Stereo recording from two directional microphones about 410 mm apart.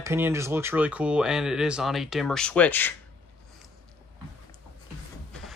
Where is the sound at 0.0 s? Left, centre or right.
Centre.